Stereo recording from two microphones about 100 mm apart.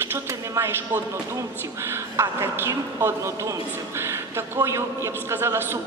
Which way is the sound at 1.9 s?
25° right (ahead or behind).